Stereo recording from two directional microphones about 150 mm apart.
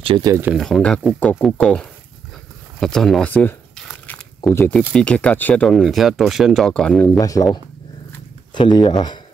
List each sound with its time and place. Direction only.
0.6 s speech: 5° left (ahead or behind)
2.8 s a sound: centre (ahead or behind)
4.5 s speech: 10° left (ahead or behind)
7.2 s speech: 25° left (ahead or behind)
8.5 s speech: 30° left (ahead or behind)